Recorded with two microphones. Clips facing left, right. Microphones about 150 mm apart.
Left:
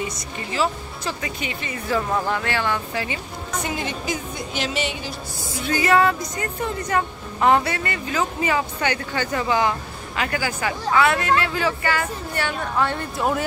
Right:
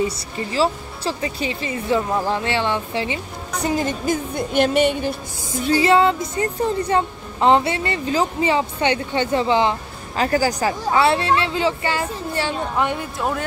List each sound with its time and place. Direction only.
0.0 s speech: 30° right (ahead or behind)
3.6 s music: 45° right (ahead or behind)
5.7 s speech: 25° right (ahead or behind)